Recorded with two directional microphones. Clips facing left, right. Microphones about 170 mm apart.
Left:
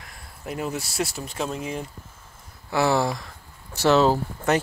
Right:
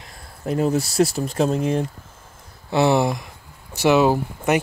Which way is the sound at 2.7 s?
20° right (ahead or behind).